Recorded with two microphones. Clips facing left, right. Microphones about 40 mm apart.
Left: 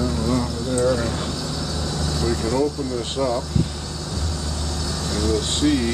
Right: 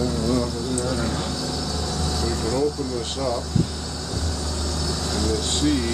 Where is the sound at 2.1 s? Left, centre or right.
Centre.